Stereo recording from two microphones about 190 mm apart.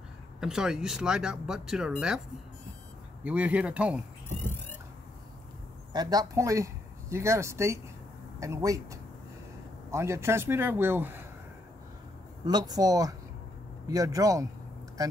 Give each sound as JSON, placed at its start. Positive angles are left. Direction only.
{"t": 0.4, "sound": "speech", "side_deg": -5}
{"t": 3.3, "sound": "speech", "side_deg": -5}
{"t": 5.9, "sound": "speech", "side_deg": -20}
{"t": 9.8, "sound": "speech", "side_deg": -15}
{"t": 12.4, "sound": "speech", "side_deg": -20}